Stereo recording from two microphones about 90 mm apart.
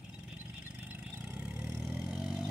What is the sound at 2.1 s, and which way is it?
Vehicle, 5° right (ahead or behind).